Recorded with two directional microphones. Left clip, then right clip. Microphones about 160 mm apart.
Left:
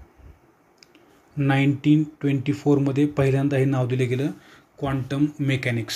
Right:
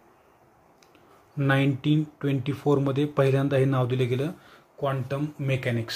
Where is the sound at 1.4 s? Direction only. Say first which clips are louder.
Left 2 dB; 5° left (ahead or behind).